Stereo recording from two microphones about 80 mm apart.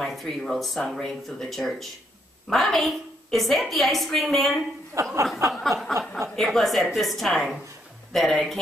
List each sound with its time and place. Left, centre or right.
0.0 s a woman's voice: centre
5.0 s speech: right
5.5 s a woman's voice: centre
5.9 s speech: right
6.3 s a woman's voice: centre